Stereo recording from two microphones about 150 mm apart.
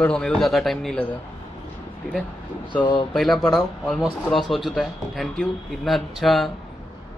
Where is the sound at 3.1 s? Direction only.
Centre (ahead or behind).